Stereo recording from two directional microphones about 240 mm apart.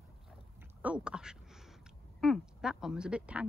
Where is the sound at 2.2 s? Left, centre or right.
Centre.